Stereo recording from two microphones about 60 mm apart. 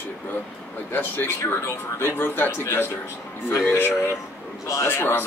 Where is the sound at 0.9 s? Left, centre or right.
Left.